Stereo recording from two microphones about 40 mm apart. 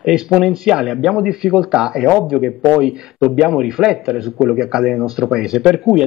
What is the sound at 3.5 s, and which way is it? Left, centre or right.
A man's voice, centre.